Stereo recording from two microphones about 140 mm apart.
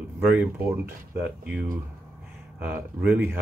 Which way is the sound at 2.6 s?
15° right (ahead or behind).